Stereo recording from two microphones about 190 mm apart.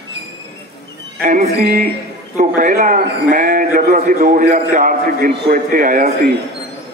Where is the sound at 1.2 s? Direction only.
40° right (ahead or behind).